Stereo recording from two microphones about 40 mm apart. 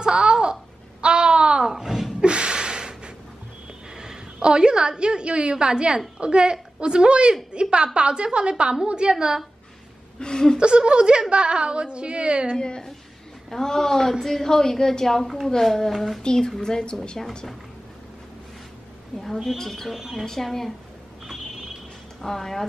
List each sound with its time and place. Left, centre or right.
0.0 s a sound: right
1.7 s a sound: centre
2.1 s a sound: right
3.9 s a woman's voice: centre
10.2 s a woman's voice: centre
10.6 s a woman's voice: right
12.5 s a woman's voice: centre
16.2 s a woman's voice: centre
19.3 s a woman's voice: centre
19.9 s a woman's voice: centre
20.2 s a woman's voice: centre
22.2 s a woman's voice: centre